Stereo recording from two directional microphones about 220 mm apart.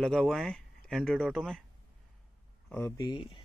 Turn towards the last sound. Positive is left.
turn(degrees=20)  # may be behind; listen again after turning